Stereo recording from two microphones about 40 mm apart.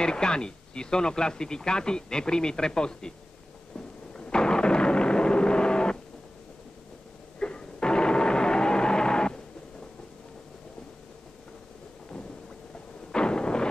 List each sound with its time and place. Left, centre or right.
0.0 s speech: left
4.2 s artillery fire: left
7.3 s a sound: left
13.1 s artillery fire: left